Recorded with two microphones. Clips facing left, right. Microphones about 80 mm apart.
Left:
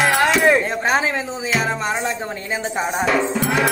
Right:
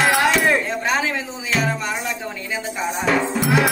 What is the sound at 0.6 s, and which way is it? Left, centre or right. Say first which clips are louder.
Speech: left 2 dB; left.